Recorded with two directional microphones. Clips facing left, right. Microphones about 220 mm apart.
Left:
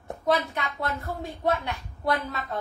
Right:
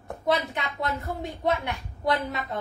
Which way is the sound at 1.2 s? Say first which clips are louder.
Left 1 dB; 20° right (ahead or behind).